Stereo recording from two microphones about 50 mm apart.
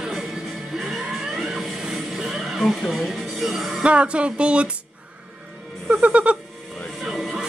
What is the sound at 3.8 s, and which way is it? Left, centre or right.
Speech, right.